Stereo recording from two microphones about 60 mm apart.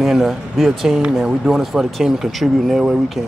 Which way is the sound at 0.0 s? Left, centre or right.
Centre.